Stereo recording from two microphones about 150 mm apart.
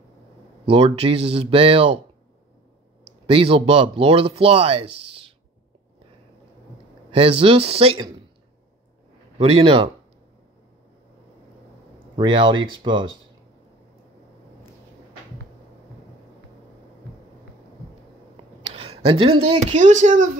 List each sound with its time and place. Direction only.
0.7 s speech: 40° right (ahead or behind)
3.3 s speech: 40° right (ahead or behind)
7.1 s speech: 40° right (ahead or behind)
9.4 s speech: 40° right (ahead or behind)
12.2 s speech: 30° right (ahead or behind)
18.3 s speech: 40° right (ahead or behind); by 20.2 s 55° right (ahead or behind)